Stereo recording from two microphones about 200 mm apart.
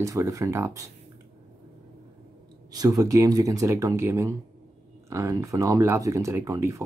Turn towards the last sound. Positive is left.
turn(degrees=-15)  # may be behind; listen again after turning